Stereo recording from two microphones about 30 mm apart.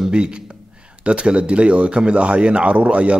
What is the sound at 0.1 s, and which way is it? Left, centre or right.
A man's voice, right.